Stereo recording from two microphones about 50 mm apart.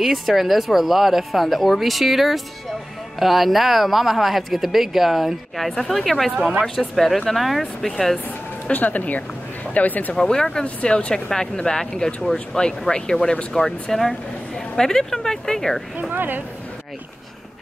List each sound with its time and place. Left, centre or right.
0.0 s speech: centre
8.7 s speech: left
10.1 s speech: centre
16.0 s a woman's voice: right